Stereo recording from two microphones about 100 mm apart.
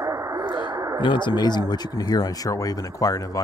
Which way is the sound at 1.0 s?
50° left (ahead or behind).